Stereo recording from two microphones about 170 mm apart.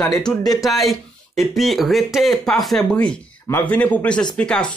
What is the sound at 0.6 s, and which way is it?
A man's voice, centre (ahead or behind).